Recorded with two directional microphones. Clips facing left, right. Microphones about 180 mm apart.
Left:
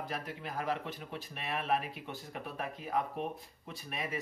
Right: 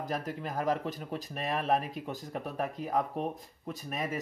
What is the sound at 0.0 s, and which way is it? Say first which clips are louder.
A man's voice: right 5 dB; 40° right (ahead or behind).